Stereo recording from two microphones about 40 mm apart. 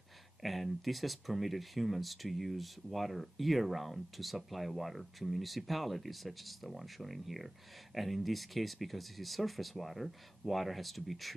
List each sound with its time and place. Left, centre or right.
0.4 s speech: centre